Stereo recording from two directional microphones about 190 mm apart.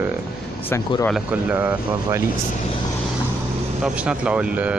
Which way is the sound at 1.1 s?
10° right (ahead or behind).